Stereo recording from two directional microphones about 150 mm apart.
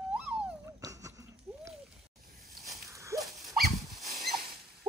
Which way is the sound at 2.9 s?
20° right (ahead or behind).